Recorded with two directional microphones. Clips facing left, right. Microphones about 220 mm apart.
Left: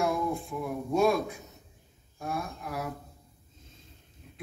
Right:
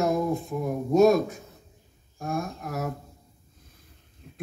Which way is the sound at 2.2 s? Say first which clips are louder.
Right 4 dB; 45° right (ahead or behind).